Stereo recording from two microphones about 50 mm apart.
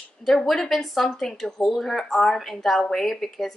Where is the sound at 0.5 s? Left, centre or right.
Centre.